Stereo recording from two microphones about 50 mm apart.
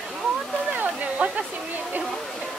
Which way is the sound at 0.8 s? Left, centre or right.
Right.